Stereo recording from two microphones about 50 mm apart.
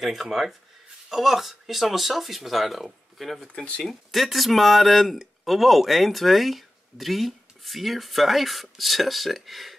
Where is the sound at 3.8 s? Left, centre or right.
Centre.